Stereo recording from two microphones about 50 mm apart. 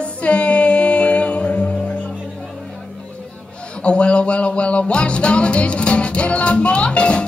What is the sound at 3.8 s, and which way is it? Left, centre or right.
Music, left.